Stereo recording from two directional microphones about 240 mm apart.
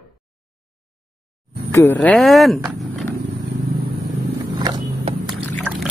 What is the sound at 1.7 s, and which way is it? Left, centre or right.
Speech, centre.